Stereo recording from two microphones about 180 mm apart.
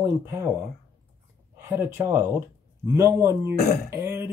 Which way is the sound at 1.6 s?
10° right (ahead or behind).